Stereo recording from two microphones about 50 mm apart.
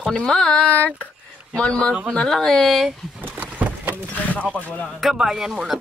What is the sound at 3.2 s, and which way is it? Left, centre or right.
Horse, right.